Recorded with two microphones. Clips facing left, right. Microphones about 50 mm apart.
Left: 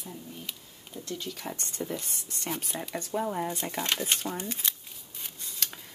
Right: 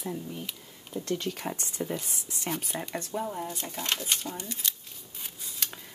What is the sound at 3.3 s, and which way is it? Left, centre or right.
Speech, left.